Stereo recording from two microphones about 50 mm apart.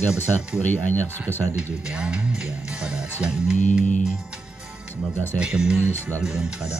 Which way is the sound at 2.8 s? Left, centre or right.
Centre.